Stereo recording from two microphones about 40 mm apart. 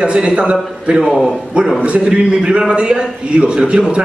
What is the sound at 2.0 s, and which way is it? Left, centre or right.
A man's voice, right.